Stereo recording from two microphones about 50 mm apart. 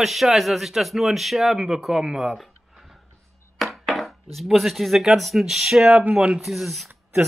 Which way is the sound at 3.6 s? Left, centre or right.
Centre.